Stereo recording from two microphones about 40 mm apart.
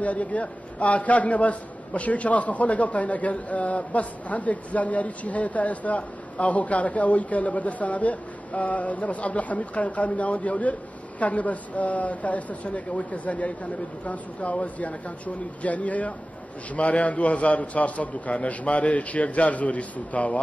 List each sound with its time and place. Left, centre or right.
0.0 s a man's voice: left